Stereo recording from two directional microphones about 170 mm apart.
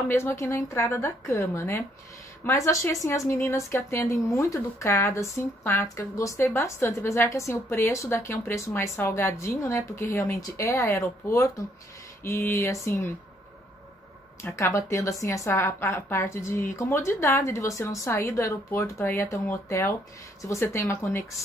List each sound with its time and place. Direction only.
0.1 s speech: 15° left (ahead or behind)
14.4 s speech: 15° left (ahead or behind)